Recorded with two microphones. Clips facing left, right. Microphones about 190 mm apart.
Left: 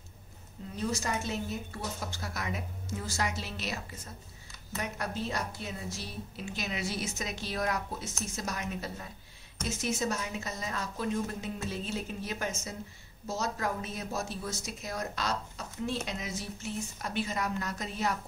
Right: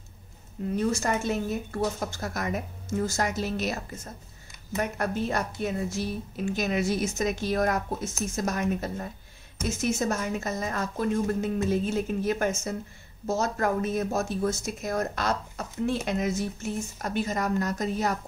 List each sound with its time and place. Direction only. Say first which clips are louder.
0.7 s a woman's voice: right 6 dB; 55° right (ahead or behind)